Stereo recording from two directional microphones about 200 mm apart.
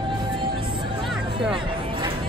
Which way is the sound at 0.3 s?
25° right (ahead or behind).